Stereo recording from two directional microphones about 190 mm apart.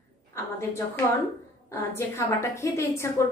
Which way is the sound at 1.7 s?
15° left (ahead or behind).